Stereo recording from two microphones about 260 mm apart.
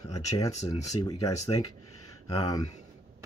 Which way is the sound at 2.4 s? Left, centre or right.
Centre.